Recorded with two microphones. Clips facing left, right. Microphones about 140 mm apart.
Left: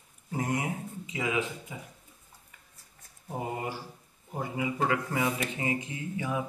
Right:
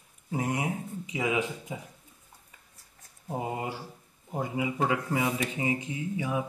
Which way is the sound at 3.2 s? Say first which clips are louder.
Right 2 dB; 20° right (ahead or behind).